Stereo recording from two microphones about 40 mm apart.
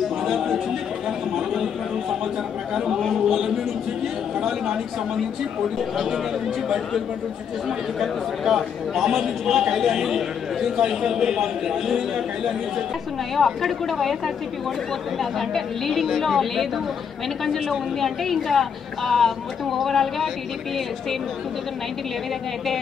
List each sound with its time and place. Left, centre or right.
0.2 s a sound: centre
2.7 s a man's voice: centre
3.0 s a man's voice: centre
8.0 s a man's voice: centre
13.4 s a woman's voice: centre